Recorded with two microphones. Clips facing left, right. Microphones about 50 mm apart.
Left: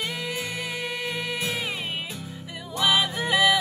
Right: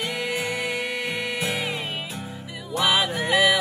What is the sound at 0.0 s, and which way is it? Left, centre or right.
Music, right.